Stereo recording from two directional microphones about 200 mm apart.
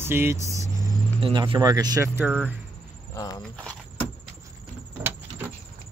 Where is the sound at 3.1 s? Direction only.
15° left (ahead or behind).